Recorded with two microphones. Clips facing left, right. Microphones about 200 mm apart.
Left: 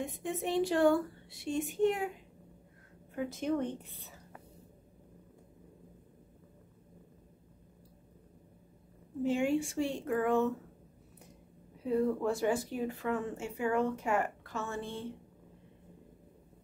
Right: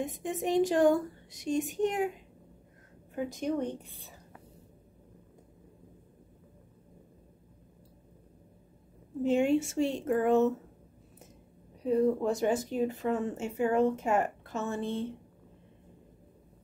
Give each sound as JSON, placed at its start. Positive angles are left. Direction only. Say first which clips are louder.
{"t": 0.0, "sound": "a woman's voice", "louder": "right 3 dB", "side_deg": -20}
{"t": 3.3, "sound": "a woman's voice", "louder": "right 1 dB", "side_deg": -15}
{"t": 9.2, "sound": "a woman's voice", "louder": "right 4 dB", "side_deg": -20}